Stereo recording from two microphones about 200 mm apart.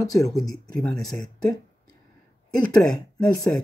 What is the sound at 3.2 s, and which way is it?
Speech, 5° left (ahead or behind).